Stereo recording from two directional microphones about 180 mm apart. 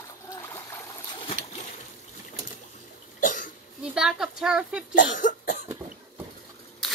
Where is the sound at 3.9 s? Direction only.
5° right (ahead or behind).